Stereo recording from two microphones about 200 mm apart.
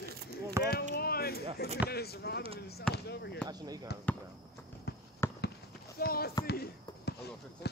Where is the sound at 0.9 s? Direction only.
50° left (ahead or behind).